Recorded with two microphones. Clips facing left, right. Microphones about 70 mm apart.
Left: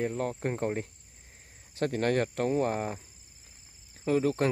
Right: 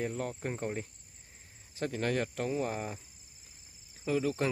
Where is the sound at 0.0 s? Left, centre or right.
Left.